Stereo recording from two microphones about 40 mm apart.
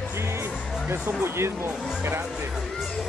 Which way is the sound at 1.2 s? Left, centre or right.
Right.